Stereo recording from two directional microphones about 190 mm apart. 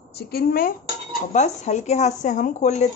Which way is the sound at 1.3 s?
35° left (ahead or behind).